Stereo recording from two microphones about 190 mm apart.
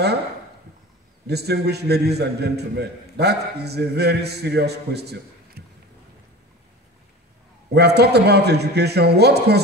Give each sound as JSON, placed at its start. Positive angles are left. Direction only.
{"t": 1.2, "sound": "a man's voice", "side_deg": -60}
{"t": 7.7, "sound": "a man's voice", "side_deg": -60}